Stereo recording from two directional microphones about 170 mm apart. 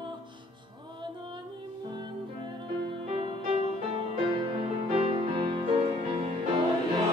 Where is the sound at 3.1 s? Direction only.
35° right (ahead or behind).